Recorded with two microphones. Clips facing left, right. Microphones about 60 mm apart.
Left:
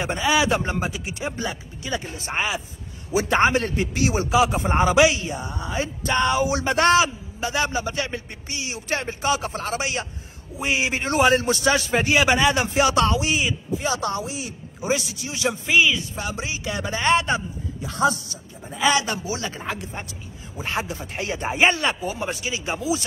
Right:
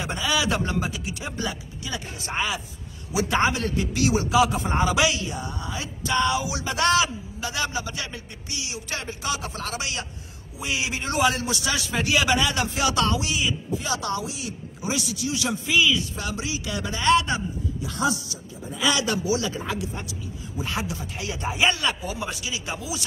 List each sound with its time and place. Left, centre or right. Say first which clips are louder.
0.0 s a man's voice: left 4 dB; left